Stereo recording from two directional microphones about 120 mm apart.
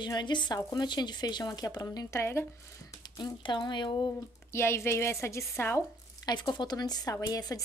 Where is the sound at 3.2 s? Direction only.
40° left (ahead or behind).